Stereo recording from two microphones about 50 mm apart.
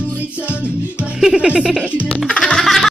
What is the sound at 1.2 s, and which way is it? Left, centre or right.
Speech, centre.